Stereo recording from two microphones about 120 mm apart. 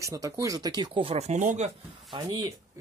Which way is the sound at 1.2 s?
70° right (ahead or behind).